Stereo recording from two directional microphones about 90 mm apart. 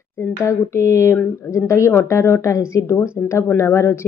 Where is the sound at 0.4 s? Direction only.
35° left (ahead or behind).